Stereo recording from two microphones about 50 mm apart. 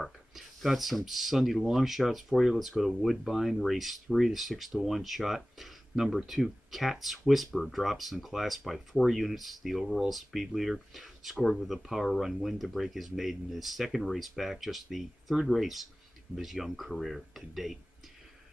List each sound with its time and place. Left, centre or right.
0.0 s speech: centre